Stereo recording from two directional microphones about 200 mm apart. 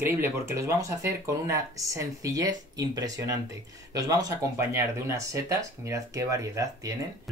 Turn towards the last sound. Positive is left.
turn(degrees=-15)  # may be behind; listen again after turning